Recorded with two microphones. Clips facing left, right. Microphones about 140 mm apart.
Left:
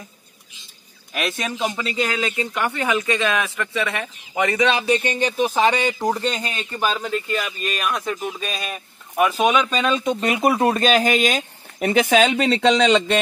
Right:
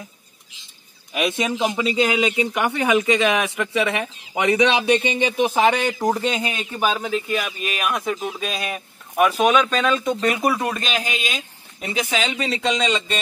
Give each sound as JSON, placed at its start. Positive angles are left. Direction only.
{"t": 1.1, "sound": "speech", "side_deg": -10}
{"t": 5.8, "sound": "speech", "side_deg": 0}
{"t": 10.8, "sound": "speech", "side_deg": 40}